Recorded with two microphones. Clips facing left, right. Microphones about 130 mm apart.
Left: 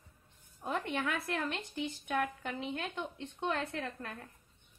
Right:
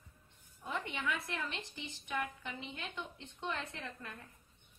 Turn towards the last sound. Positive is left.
turn(degrees=60)  # may be behind; listen again after turning